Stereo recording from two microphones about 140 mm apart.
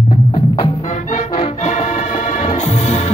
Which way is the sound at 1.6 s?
55° left (ahead or behind).